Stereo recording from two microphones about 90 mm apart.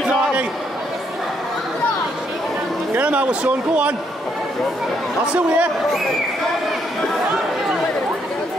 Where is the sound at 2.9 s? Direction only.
15° right (ahead or behind).